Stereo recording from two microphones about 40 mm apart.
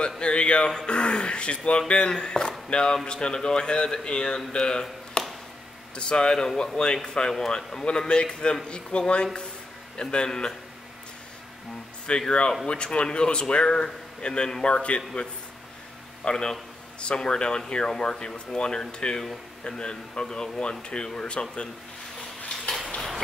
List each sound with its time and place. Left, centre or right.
0.2 s speech: left
5.2 s a sound: centre
5.9 s speech: left
7.8 s speech: left
12.3 s speech: left
16.3 s speech: centre